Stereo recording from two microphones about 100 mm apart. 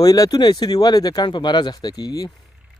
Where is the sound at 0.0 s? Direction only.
40° left (ahead or behind).